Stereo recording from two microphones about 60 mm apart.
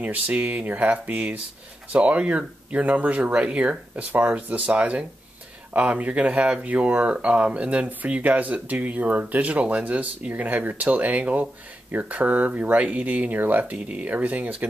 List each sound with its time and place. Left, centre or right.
0.0 s speech: right